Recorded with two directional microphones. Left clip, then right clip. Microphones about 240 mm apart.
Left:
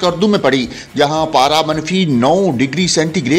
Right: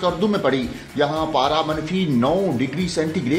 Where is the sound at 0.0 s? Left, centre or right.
Left.